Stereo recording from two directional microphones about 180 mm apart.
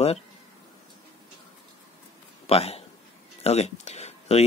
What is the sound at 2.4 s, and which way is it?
A man's voice, 35° left (ahead or behind).